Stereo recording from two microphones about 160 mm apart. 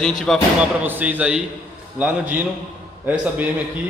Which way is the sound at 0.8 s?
10° right (ahead or behind).